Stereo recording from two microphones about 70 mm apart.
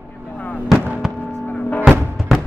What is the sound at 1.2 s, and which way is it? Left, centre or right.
Music, left.